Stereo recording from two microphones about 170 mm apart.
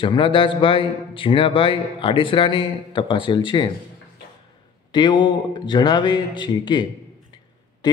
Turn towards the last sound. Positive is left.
turn(degrees=25)  # may be behind; listen again after turning